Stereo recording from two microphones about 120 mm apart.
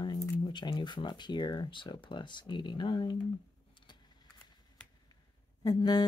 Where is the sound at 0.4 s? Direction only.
40° left (ahead or behind).